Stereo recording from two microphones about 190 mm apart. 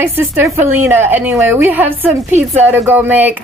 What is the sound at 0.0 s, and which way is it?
A woman's voice, 10° right (ahead or behind).